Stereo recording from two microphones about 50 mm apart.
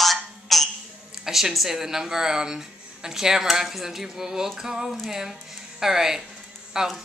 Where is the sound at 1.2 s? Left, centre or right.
Centre.